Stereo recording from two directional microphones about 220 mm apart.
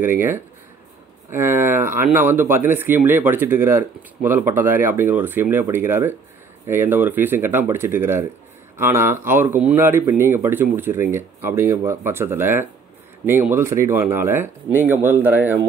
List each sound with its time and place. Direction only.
0.0 s speech: 10° right (ahead or behind)